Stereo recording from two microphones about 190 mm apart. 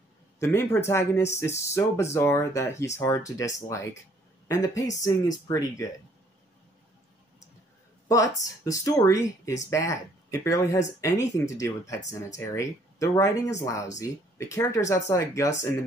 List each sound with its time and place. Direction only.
0.4 s speech: 15° left (ahead or behind)
8.1 s speech: 15° left (ahead or behind)